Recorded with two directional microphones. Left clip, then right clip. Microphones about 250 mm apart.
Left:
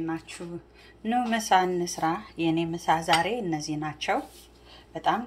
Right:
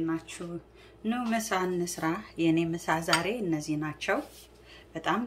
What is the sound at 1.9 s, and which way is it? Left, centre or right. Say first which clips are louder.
Speech: left 4 dB; centre.